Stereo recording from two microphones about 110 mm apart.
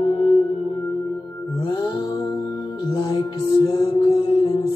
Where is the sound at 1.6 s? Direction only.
35° left (ahead or behind).